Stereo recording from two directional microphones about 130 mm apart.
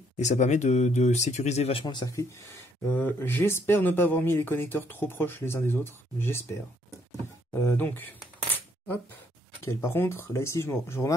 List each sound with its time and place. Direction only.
0.2 s speech: 65° left (ahead or behind); by 2.1 s 35° left (ahead or behind)
2.1 s speech: 20° left (ahead or behind)
7.5 s speech: 20° left (ahead or behind)
9.7 s speech: 20° left (ahead or behind)